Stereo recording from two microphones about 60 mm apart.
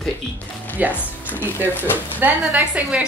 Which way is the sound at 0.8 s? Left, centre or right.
Right.